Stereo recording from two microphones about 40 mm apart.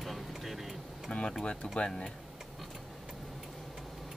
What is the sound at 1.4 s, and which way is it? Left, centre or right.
Speech, left.